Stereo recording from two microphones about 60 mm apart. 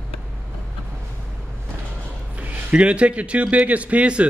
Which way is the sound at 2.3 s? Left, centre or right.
Right.